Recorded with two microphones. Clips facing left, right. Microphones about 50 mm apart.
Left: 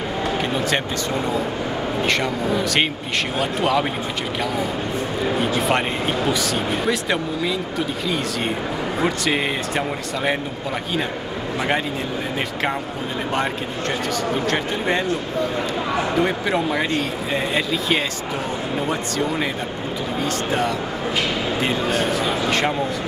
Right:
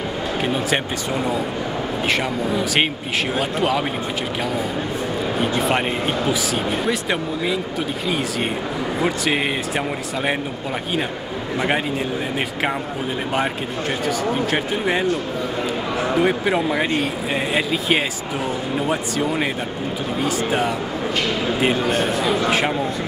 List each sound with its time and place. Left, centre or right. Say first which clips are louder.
2.0 s speech: even; centre
5.6 s speech: even; centre
9.0 s speech: even; centre
14.0 s speech: right 2 dB; centre
16.2 s speech: right 4 dB; centre